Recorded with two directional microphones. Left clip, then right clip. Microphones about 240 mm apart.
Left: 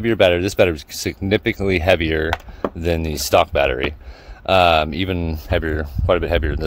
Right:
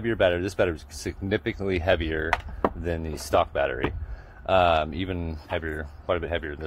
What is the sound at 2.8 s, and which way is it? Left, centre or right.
Speech, left.